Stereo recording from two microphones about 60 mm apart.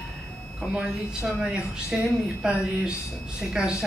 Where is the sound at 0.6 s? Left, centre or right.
Centre.